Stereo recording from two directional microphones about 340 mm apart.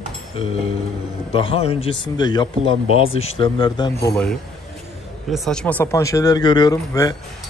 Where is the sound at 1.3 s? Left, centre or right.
Centre.